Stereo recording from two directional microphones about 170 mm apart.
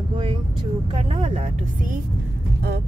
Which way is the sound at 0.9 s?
35° right (ahead or behind).